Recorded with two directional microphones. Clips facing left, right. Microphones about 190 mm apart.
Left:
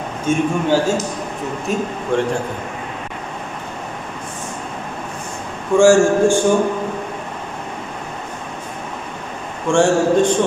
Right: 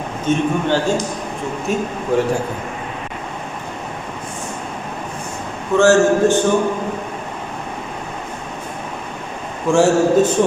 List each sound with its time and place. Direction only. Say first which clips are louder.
0.2 s a man's voice: even; 10° left (ahead or behind)
5.8 s a man's voice: left 1 dB; 10° left (ahead or behind)
9.7 s a man's voice: right 1 dB; 5° right (ahead or behind)